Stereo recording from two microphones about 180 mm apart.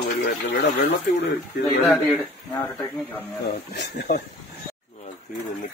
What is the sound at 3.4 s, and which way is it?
Speech, 75° left (ahead or behind).